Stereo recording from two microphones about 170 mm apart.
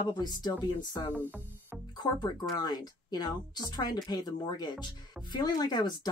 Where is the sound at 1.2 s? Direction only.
10° right (ahead or behind).